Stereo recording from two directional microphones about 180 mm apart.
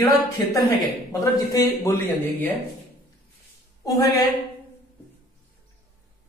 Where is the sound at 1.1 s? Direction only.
20° left (ahead or behind).